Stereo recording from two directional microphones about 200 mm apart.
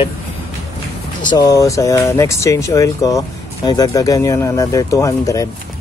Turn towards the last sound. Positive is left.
turn(degrees=15)  # may be behind; listen again after turning